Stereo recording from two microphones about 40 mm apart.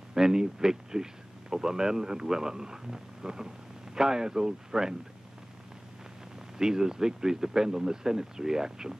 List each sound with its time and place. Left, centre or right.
0.1 s speech: centre
6.6 s speech: centre